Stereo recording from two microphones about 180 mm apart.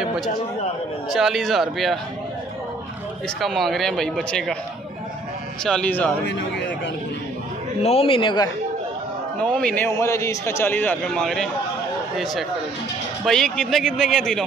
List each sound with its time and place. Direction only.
1.1 s speech: centre (ahead or behind)
3.3 s speech: centre (ahead or behind)
5.6 s speech: 5° left (ahead or behind)
7.8 s a man's voice: 30° left (ahead or behind)
9.4 s a man's voice: 5° left (ahead or behind)
13.2 s speech: centre (ahead or behind)